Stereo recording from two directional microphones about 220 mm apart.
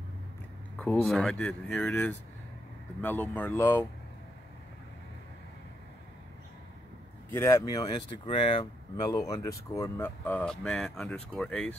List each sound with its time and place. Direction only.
0.7 s speech: 5° left (ahead or behind)
7.2 s speech: 10° left (ahead or behind)